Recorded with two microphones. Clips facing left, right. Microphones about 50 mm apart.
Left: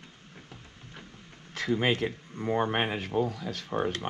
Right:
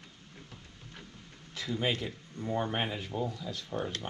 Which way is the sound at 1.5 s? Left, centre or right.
Left.